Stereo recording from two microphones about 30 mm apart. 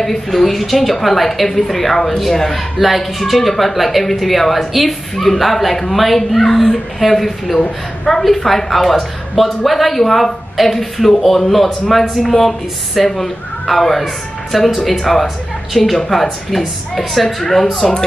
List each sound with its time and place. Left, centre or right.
0.0 s a woman's voice: centre